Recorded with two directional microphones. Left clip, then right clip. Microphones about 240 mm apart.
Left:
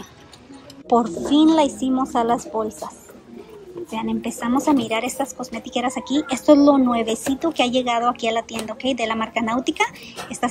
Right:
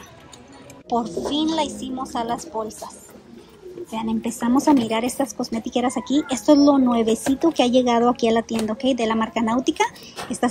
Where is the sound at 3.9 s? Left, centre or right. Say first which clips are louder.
Even; centre.